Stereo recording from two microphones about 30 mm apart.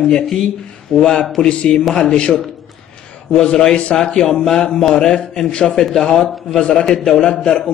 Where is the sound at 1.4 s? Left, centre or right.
Left.